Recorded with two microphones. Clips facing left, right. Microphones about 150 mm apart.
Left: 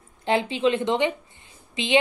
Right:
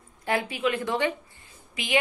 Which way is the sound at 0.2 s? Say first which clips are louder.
Left 5 dB; 25° left (ahead or behind).